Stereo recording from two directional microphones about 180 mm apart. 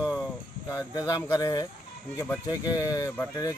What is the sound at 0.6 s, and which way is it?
Speech, 20° left (ahead or behind).